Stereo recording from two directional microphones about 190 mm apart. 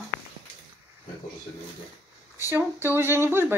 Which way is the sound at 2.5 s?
10° right (ahead or behind).